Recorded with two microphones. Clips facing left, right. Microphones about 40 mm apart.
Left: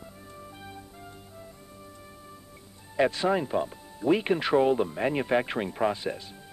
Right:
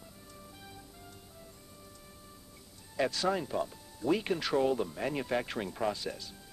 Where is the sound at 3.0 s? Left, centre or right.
Left.